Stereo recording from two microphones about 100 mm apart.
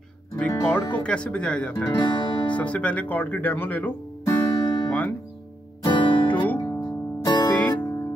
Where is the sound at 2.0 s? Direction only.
45° left (ahead or behind).